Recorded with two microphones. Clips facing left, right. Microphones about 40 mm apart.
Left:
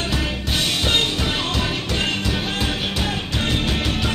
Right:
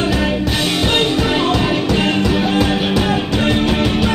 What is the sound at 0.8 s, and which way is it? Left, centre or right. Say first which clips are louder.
Music: right 7 dB; centre.